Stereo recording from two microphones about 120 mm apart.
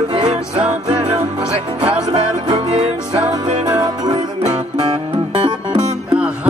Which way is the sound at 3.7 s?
35° right (ahead or behind).